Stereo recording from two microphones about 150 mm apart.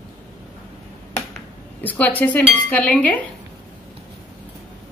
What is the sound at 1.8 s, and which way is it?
Dishes, 10° left (ahead or behind).